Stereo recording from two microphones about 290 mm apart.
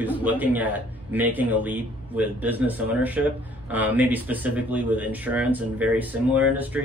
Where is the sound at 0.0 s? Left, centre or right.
Centre.